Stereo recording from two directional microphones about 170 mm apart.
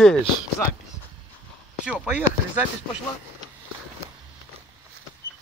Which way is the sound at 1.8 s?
5° right (ahead or behind).